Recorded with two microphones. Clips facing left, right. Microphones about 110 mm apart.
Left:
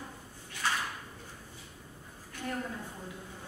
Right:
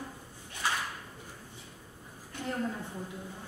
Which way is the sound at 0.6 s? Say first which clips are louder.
Even; 15° right (ahead or behind).